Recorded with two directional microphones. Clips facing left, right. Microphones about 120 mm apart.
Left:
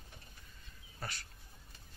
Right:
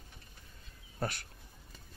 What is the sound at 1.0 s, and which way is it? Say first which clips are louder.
Speech: right 9 dB; 60° right (ahead or behind).